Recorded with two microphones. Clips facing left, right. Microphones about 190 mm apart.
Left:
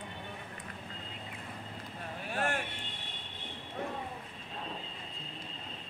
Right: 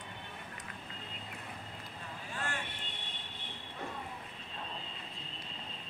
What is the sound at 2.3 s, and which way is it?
Vehicle, 55° left (ahead or behind).